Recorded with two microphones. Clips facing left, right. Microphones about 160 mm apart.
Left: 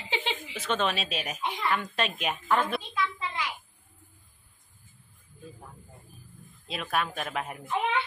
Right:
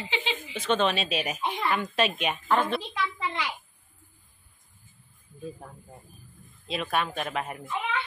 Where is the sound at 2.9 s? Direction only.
90° right.